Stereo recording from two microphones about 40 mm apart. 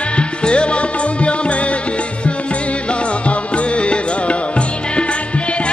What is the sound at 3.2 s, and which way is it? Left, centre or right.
Music, left.